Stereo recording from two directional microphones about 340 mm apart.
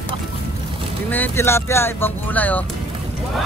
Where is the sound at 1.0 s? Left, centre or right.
Centre.